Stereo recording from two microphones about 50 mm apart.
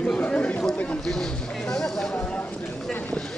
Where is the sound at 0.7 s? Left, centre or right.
Left.